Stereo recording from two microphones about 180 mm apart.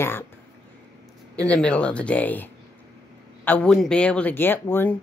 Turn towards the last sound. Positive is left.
turn(degrees=10)  # may be behind; listen again after turning